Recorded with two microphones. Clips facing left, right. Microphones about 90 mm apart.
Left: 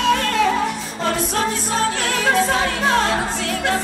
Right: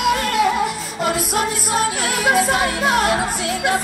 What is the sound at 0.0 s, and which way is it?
Music, 10° right (ahead or behind).